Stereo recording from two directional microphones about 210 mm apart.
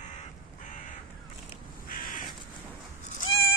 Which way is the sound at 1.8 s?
40° left (ahead or behind).